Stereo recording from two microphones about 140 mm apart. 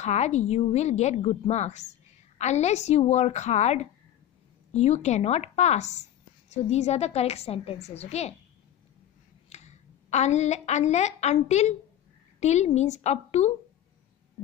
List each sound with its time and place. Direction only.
0.0 s a woman's voice: 55° left (ahead or behind)
9.5 s a woman's voice: 55° left (ahead or behind)